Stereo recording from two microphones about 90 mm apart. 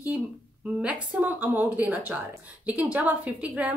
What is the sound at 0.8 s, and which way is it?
A woman's voice, 15° right (ahead or behind).